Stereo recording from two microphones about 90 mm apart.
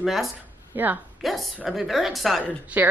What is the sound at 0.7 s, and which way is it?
Speech, 20° right (ahead or behind).